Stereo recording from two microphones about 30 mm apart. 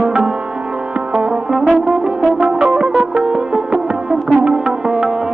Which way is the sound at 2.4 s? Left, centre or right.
Right.